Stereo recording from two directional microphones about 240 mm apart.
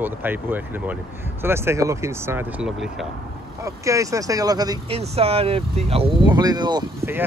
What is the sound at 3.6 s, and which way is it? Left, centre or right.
Speech, centre.